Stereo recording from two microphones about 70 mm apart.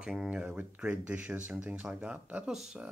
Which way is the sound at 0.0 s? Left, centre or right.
Centre.